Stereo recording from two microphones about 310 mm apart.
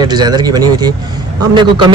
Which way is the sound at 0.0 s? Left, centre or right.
Centre.